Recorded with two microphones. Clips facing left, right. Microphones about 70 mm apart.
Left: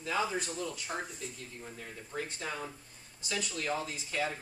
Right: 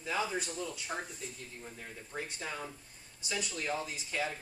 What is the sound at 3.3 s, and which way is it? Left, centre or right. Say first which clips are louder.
Speech: left 1 dB; centre.